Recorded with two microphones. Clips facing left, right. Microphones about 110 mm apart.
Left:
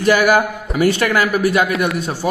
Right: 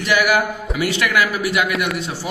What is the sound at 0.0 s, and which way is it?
A man's voice, 40° left (ahead or behind).